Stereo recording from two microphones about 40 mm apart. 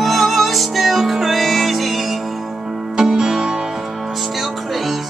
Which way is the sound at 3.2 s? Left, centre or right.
Centre.